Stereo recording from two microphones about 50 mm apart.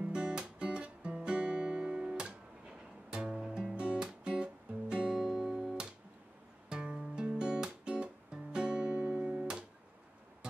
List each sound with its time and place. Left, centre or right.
0.0 s music: centre